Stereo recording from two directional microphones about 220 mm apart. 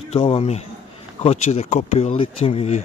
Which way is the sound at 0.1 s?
30° left (ahead or behind).